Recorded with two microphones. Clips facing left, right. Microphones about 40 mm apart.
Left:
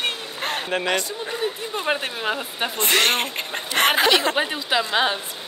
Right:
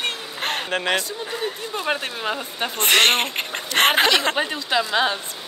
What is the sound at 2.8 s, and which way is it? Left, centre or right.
Speech, right.